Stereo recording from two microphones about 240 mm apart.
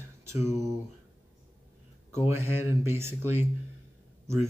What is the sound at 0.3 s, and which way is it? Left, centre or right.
Speech, centre.